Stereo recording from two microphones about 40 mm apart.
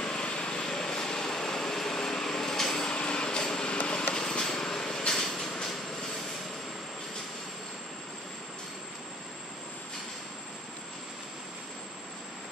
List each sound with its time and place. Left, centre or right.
0.0 s vehicle: left